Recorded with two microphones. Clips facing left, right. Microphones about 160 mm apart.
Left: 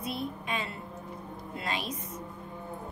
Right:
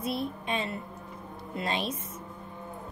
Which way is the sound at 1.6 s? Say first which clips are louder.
Right 4 dB; 25° right (ahead or behind).